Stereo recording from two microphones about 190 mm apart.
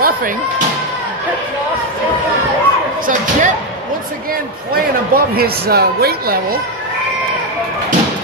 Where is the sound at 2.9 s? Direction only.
45° right (ahead or behind).